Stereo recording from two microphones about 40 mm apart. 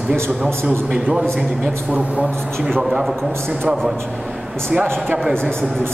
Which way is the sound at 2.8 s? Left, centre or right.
Centre.